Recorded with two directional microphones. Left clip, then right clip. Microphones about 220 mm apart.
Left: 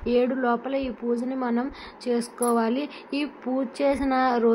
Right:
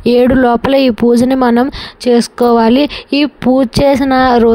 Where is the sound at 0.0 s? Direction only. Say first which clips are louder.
Right 14 dB; 50° right (ahead or behind).